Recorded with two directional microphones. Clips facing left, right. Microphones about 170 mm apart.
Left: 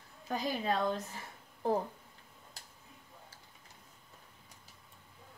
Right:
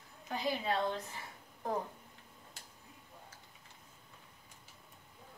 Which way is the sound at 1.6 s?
30° left (ahead or behind).